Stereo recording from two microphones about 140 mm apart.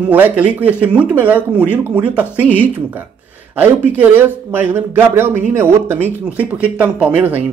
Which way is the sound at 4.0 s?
15° right (ahead or behind).